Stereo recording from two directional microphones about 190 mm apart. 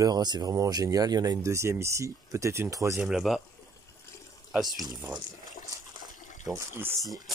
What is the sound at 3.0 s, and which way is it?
Speech, centre (ahead or behind).